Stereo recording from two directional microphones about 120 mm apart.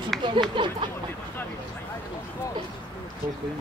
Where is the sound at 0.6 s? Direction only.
45° right (ahead or behind).